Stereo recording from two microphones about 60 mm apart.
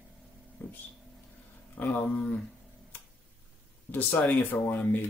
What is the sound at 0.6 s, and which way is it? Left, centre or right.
Speech, left.